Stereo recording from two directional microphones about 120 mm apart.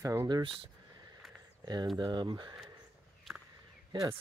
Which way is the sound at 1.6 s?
35° right (ahead or behind).